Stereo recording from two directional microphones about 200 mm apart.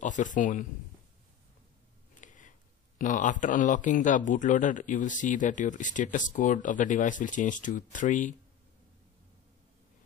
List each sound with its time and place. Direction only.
0.0 s a man's voice: 40° left (ahead or behind)
2.1 s a sound: 40° left (ahead or behind)
3.0 s a man's voice: 40° left (ahead or behind)